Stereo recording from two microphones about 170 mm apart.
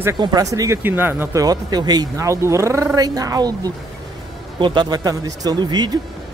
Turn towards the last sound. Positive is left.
turn(degrees=-25)  # may be behind; listen again after turning